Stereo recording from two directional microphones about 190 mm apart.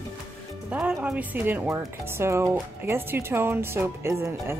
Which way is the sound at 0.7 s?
5° right (ahead or behind).